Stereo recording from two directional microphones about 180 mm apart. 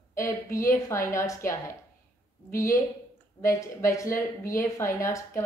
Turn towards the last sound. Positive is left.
turn(degrees=15)  # may be behind; listen again after turning